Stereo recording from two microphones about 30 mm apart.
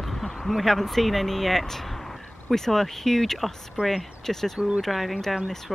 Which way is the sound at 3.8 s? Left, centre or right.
Right.